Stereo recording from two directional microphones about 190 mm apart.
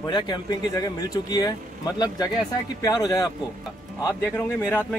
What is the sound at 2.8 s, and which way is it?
A man's voice, 20° left (ahead or behind).